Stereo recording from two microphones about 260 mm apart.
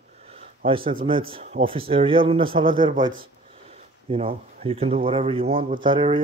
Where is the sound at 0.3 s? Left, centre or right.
Right.